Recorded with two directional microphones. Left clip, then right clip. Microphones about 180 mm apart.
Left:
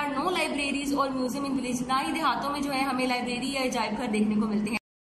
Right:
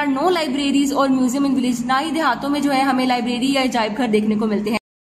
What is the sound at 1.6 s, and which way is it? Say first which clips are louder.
A woman's voice: right 9 dB; 50° right (ahead or behind).